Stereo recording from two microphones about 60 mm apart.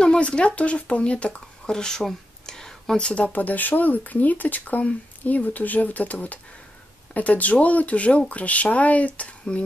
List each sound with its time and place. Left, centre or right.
0.0 s speech: centre
3.3 s speech: left